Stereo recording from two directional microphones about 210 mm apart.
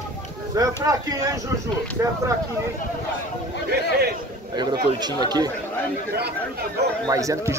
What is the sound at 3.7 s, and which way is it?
Speech, 50° right (ahead or behind).